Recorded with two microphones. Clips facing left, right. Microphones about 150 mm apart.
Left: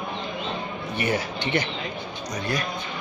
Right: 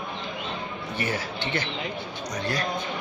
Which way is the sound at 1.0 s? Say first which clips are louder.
Left 4 dB; 15° left (ahead or behind).